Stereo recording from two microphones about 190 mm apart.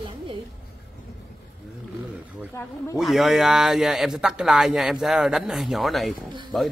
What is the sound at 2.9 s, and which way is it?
Speech, centre (ahead or behind).